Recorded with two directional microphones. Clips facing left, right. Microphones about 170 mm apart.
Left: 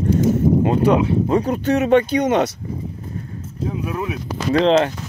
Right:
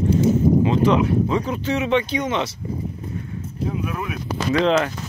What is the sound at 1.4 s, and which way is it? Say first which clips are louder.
Speech: left 5 dB; 45° left (ahead or behind).